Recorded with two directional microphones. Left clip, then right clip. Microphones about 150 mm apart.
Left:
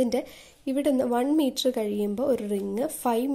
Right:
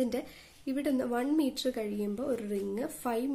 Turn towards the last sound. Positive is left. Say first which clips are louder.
# left 7 dB
turn(degrees=35)  # may be behind; listen again after turning